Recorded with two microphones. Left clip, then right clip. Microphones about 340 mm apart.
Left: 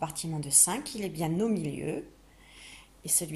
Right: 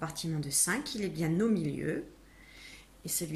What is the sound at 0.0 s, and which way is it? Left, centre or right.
A woman's voice, centre.